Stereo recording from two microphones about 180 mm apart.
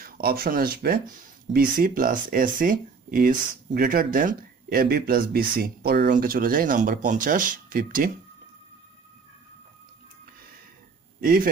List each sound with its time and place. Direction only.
0.0 s speech: 55° right (ahead or behind)
11.1 s speech: 50° right (ahead or behind)